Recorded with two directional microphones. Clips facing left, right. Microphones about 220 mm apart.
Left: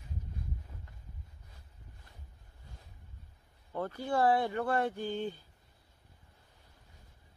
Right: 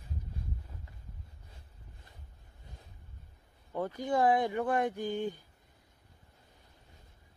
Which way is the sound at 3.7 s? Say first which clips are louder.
Right 1 dB; 15° right (ahead or behind).